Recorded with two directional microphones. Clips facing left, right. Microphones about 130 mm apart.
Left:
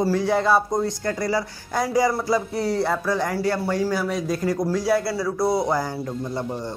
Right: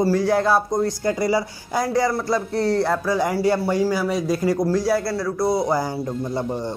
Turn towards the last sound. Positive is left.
turn(degrees=-5)  # may be behind; listen again after turning